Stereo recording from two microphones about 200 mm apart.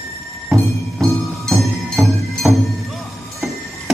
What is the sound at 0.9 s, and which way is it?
Music, centre (ahead or behind).